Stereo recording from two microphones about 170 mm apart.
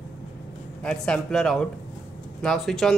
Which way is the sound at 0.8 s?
5° left (ahead or behind).